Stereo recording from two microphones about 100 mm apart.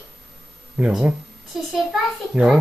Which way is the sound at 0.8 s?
20° right (ahead or behind).